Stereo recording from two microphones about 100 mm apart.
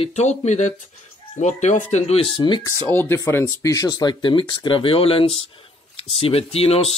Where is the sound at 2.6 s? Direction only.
25° left (ahead or behind).